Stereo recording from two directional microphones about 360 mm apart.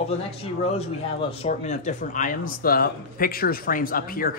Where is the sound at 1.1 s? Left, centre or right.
Centre.